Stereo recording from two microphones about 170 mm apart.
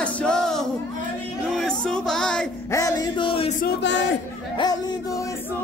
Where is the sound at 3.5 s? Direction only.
80° left.